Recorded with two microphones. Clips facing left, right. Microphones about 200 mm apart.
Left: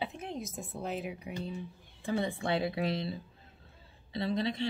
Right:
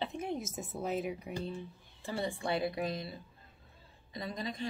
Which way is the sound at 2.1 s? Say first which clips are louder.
Left 3 dB; 20° left (ahead or behind).